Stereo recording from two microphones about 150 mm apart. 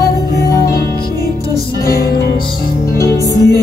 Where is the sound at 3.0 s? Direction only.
20° left (ahead or behind).